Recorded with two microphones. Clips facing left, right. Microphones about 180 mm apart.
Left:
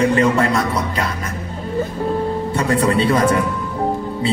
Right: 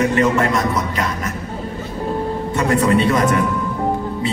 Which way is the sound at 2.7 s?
30° left (ahead or behind).